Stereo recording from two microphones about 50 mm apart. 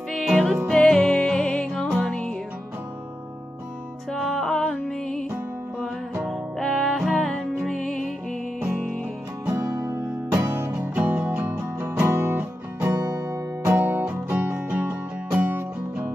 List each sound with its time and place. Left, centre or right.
0.1 s music: centre
0.7 s music: centre
4.4 s music: centre
6.2 s music: centre
8.6 s music: right
9.6 s music: right
10.3 s music: right
10.8 s music: right
12.1 s music: right
12.9 s music: right
13.7 s music: right